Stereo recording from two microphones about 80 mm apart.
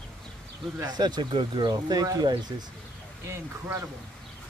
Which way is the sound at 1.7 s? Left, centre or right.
Right.